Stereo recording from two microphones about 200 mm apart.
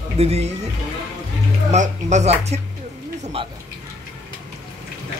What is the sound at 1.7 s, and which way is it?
Speech, 35° right (ahead or behind).